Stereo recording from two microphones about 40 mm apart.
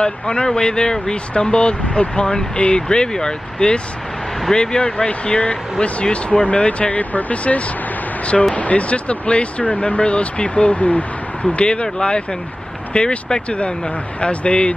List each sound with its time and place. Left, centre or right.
0.0 s speech: left
11.5 s speech: left